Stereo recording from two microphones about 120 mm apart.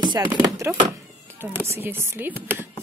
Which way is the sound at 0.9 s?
20° right (ahead or behind).